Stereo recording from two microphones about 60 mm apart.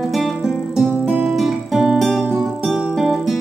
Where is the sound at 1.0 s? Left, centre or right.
Right.